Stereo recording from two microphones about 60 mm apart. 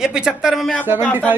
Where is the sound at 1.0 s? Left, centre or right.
Left.